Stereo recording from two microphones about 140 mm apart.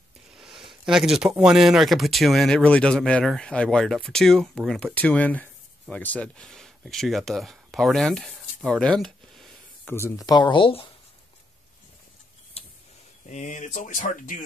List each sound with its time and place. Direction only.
0.4 s speech: centre (ahead or behind)
10.2 s speech: 30° left (ahead or behind)
12.6 s a sound: 45° left (ahead or behind)
13.3 s speech: 60° left (ahead or behind)